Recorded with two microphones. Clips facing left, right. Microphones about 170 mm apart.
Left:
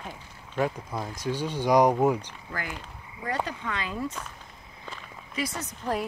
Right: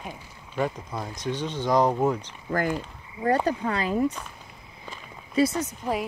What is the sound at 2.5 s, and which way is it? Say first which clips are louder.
Speech: right 11 dB; 45° right (ahead or behind).